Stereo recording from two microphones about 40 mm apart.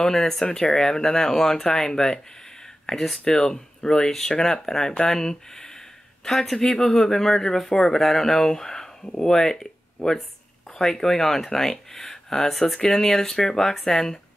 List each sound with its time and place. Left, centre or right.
0.0 s speech: centre
9.0 s speech: left
10.8 s speech: centre